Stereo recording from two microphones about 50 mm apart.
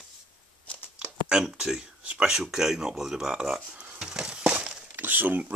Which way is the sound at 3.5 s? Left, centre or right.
Centre.